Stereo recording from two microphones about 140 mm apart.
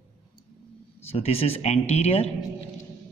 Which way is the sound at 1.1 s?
45° left (ahead or behind).